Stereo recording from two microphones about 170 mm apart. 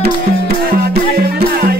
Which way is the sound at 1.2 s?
65° right (ahead or behind).